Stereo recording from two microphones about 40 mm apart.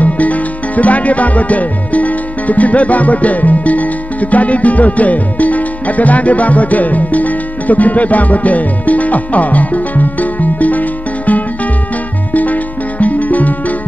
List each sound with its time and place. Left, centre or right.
0.0 s music: left
13.0 s music: left